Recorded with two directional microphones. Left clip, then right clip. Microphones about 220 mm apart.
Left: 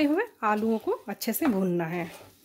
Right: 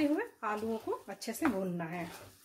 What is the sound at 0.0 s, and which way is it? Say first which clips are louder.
Speech: left 8 dB; 50° left (ahead or behind).